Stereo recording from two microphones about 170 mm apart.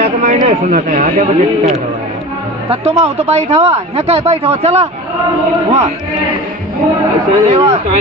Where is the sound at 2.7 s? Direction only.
40° right (ahead or behind).